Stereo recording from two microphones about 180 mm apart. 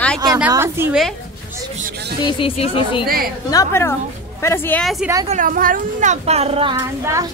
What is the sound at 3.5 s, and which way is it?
A woman's voice, 15° left (ahead or behind).